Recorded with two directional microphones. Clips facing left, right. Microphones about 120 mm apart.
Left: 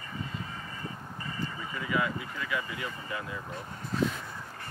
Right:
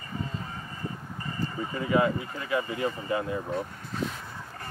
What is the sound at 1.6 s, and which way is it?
Speech, 35° right (ahead or behind).